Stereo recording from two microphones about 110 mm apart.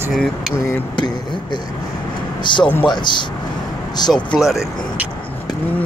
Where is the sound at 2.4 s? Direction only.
45° left (ahead or behind).